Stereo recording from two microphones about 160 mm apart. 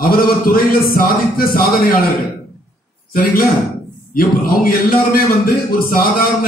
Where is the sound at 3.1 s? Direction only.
65° left (ahead or behind).